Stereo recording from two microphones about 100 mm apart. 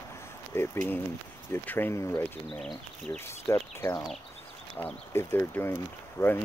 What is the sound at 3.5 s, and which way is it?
Speech, 25° left (ahead or behind).